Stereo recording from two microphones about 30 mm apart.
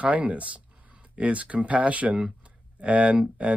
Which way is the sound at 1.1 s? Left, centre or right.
Right.